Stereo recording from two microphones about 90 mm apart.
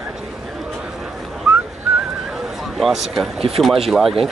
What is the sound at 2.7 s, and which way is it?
Speech, centre (ahead or behind).